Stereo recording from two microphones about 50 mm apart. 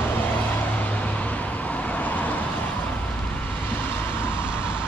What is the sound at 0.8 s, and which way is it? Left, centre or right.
Vehicle, left.